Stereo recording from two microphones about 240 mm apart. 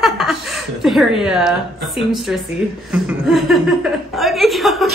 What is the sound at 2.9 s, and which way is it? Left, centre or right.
Speech, centre.